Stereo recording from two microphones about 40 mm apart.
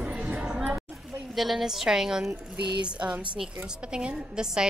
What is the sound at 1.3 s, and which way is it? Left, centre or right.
Speech, centre.